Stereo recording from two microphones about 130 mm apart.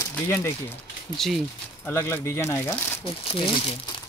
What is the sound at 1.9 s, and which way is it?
Speech, 20° left (ahead or behind).